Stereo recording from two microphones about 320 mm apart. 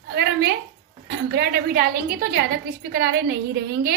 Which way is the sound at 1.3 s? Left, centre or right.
Right.